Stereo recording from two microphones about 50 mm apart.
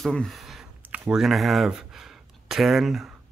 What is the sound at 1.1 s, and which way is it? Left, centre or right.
Speech, centre.